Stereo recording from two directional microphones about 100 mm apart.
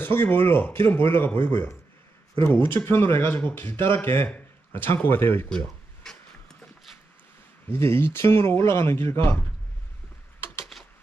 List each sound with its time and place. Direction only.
0.0 s speech: 20° left (ahead or behind)
2.8 s speech: 25° left (ahead or behind)
5.5 s a sound: 5° left (ahead or behind)
7.7 s speech: 25° left (ahead or behind)
10.6 s typing: centre (ahead or behind)